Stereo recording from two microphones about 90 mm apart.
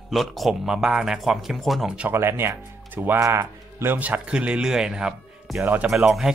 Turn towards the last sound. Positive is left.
turn(degrees=-5)  # may be behind; listen again after turning